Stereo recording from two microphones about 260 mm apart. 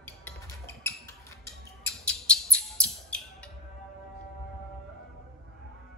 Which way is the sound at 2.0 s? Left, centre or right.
Centre.